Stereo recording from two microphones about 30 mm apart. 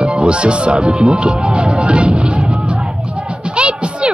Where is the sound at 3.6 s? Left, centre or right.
Right.